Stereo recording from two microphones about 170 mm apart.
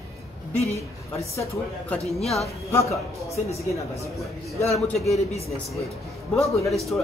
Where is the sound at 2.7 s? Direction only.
15° left (ahead or behind).